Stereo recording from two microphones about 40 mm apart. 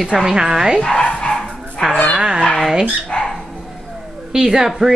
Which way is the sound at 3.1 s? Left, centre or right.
Left.